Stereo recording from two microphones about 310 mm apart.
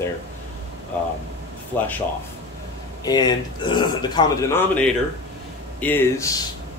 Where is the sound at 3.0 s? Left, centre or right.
Centre.